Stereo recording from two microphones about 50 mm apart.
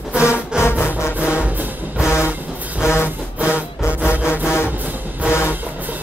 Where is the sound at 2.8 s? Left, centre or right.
Left.